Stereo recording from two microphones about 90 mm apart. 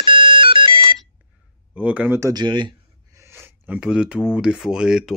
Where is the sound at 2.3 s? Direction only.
60° right (ahead or behind).